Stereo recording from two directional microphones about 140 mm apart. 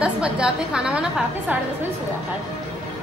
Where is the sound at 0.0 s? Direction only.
5° right (ahead or behind).